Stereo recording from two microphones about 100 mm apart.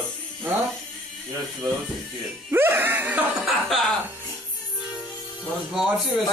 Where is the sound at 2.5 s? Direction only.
20° right (ahead or behind).